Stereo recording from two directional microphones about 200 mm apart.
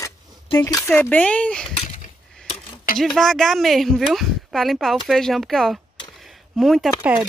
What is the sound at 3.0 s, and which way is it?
Speech, centre (ahead or behind).